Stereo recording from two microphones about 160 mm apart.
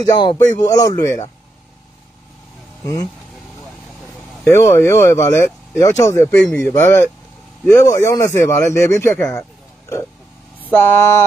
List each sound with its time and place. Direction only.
0.0 s speech: 25° left (ahead or behind)
2.8 s speech: 25° left (ahead or behind)
4.5 s speech: 15° left (ahead or behind)
10.6 s a sound: 10° left (ahead or behind)